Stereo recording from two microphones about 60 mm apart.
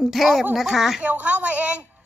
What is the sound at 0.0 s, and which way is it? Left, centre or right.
Speech, centre.